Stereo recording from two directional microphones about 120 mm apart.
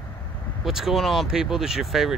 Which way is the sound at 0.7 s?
5° right (ahead or behind).